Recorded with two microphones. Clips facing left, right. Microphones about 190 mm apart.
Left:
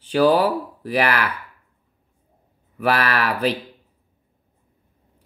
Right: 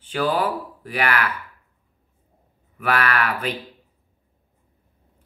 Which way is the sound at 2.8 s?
35° left (ahead or behind).